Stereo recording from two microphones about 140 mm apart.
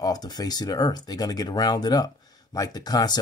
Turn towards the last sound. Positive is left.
turn(degrees=30)  # may be behind; listen again after turning